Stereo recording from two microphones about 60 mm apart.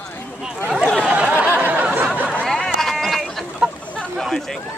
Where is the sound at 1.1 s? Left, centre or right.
Right.